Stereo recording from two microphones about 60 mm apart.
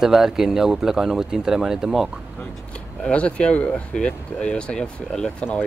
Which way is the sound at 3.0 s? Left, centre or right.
Centre.